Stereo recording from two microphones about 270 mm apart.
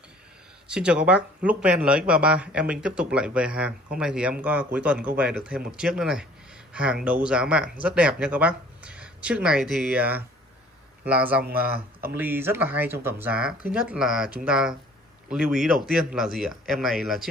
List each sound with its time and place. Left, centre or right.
0.7 s speech: centre
11.4 s speech: right
12.2 s speech: centre